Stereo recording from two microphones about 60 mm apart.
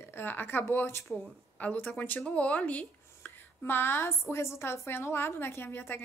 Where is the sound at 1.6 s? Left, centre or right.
Left.